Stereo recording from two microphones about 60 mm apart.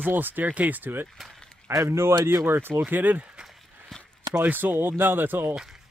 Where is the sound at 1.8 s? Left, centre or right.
Right.